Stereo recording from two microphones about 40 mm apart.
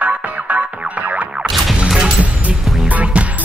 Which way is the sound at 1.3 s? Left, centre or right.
Centre.